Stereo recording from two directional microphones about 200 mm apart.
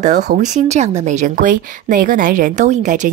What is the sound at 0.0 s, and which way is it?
Speech, 35° right (ahead or behind).